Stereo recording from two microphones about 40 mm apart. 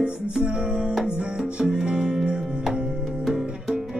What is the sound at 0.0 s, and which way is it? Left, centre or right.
Music, right.